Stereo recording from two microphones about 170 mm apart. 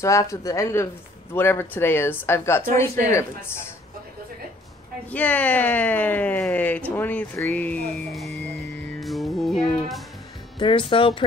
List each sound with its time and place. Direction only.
0.0 s speech: 15° left (ahead or behind)
5.1 s speech: 10° left (ahead or behind)
9.0 s music: centre (ahead or behind)
10.6 s speech: 30° left (ahead or behind)